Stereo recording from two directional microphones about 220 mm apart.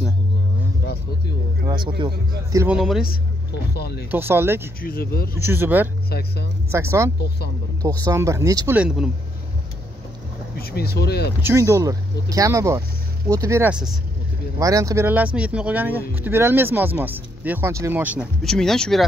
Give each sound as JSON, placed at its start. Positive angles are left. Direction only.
{"t": 1.7, "sound": "a man's voice", "side_deg": -20}
{"t": 2.6, "sound": "speech", "side_deg": -5}
{"t": 3.7, "sound": "speech", "side_deg": 45}
{"t": 4.1, "sound": "speech", "side_deg": -10}
{"t": 4.8, "sound": "speech", "side_deg": 45}
{"t": 5.3, "sound": "speech", "side_deg": -10}
{"t": 6.0, "sound": "speech", "side_deg": 45}
{"t": 6.7, "sound": "speech", "side_deg": -10}
{"t": 10.6, "sound": "speech", "side_deg": 45}
{"t": 11.4, "sound": "speech", "side_deg": -15}